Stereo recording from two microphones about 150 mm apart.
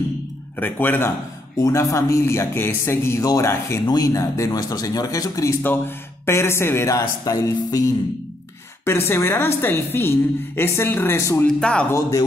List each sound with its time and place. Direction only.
0.6 s a woman's voice: 10° left (ahead or behind)
11.4 s speech: 5° left (ahead or behind)
11.9 s speech: 20° left (ahead or behind)